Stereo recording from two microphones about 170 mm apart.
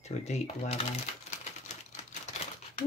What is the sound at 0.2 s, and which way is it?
Speech, 40° left (ahead or behind).